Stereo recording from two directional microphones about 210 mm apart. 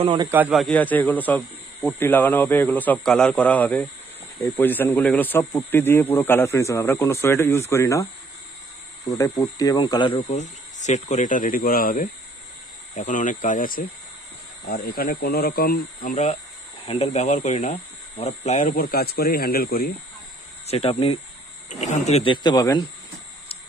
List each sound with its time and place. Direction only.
0.0 s speech: 20° right (ahead or behind)
0.3 s speech: 5° right (ahead or behind); by 19.9 s 45° left (ahead or behind)
20.6 s speech: 30° left (ahead or behind)